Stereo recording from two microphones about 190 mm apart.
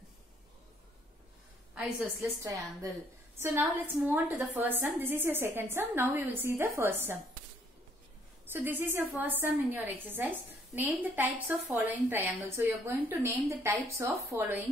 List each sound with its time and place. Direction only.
1.8 s a woman's voice: 15° right (ahead or behind)
8.5 s a woman's voice: 10° right (ahead or behind)